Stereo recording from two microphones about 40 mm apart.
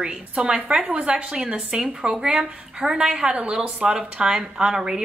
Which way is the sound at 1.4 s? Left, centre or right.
Centre.